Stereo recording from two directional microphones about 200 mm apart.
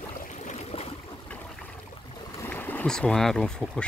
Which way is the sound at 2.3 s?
10° left (ahead or behind).